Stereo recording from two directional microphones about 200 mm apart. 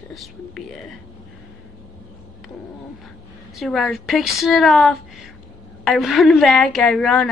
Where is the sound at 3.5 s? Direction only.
Centre (ahead or behind).